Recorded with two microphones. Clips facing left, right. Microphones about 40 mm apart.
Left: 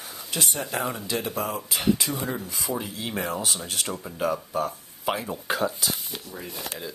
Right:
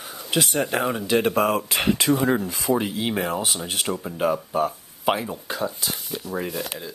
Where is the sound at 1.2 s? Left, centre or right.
Right.